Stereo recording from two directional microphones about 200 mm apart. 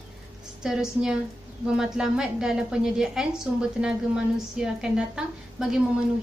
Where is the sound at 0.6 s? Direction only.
5° right (ahead or behind).